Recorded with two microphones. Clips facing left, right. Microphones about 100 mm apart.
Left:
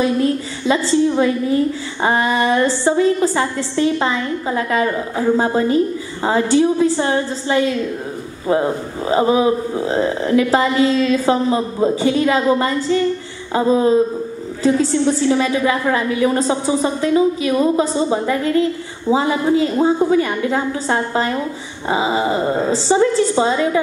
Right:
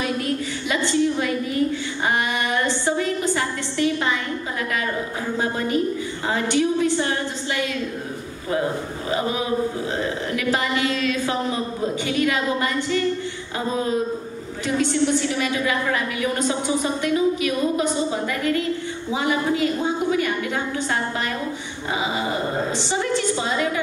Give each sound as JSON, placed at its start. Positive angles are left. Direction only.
{"t": 0.0, "sound": "a woman's voice", "side_deg": 30}
{"t": 9.1, "sound": "a woman's voice", "side_deg": 30}